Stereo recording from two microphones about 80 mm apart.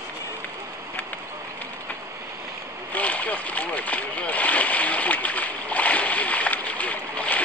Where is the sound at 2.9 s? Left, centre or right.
Centre.